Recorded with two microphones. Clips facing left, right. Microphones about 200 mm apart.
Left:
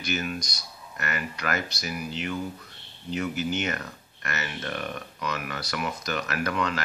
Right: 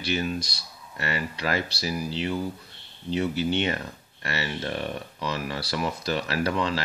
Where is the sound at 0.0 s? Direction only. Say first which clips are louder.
Right 3 dB; 30° right (ahead or behind).